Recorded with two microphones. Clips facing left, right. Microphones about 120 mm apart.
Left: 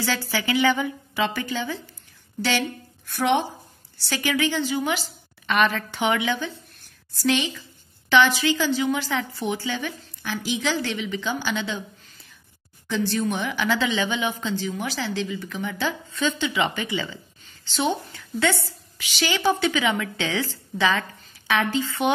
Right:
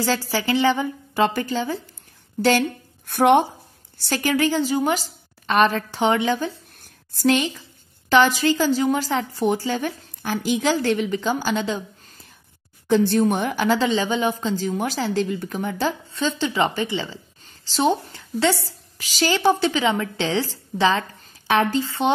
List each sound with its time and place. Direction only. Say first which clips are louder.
0.0 s speech: right 4 dB; 40° right (ahead or behind)
1.1 s speech: right 5 dB; 45° right (ahead or behind)
3.1 s a woman's voice: right 6 dB; 55° right (ahead or behind)
12.8 s speech: right 7 dB; 50° right (ahead or behind); by 22.1 s 35° right (ahead or behind)